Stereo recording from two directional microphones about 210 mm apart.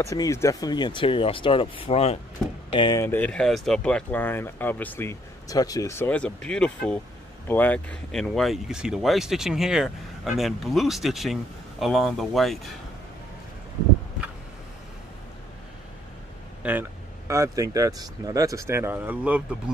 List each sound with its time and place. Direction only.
0.0 s speech: 15° left (ahead or behind)
16.6 s speech: 5° right (ahead or behind)